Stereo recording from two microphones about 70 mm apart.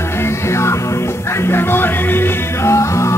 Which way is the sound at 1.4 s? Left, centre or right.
Left.